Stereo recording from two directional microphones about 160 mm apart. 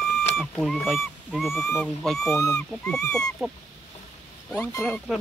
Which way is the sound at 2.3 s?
20° left (ahead or behind).